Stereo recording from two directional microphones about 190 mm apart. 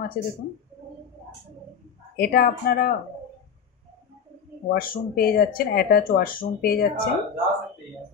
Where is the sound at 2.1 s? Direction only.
55° left (ahead or behind).